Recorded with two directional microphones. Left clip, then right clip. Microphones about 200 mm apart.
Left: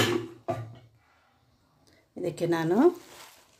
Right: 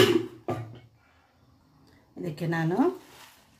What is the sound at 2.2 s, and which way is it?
Speech, 40° left (ahead or behind).